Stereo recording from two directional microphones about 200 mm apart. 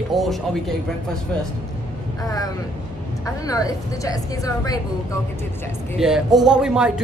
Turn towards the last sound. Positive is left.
turn(degrees=-5)  # may be behind; listen again after turning